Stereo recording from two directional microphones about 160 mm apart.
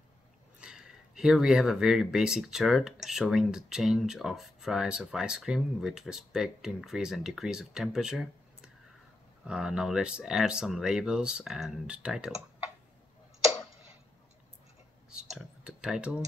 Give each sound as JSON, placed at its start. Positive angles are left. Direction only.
{"t": 0.6, "sound": "speech", "side_deg": -5}
{"t": 15.0, "sound": "clicking", "side_deg": -5}